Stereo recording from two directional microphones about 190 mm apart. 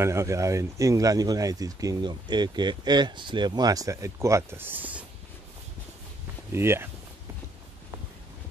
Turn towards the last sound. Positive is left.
turn(degrees=-15)  # may be behind; listen again after turning